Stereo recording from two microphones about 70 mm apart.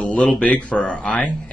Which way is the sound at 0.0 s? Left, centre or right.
Centre.